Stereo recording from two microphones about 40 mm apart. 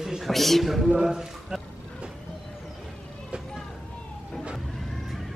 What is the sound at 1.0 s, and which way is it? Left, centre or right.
Speech, centre.